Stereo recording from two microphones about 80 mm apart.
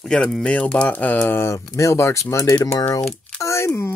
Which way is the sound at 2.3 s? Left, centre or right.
Left.